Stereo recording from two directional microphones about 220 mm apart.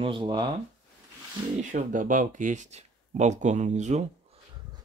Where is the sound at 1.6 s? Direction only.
35° right (ahead or behind).